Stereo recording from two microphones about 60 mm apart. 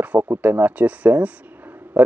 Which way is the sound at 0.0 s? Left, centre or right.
Right.